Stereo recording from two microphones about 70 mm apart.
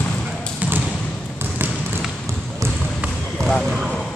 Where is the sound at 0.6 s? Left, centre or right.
Centre.